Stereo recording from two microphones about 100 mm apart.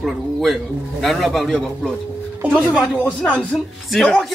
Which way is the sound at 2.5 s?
15° left (ahead or behind).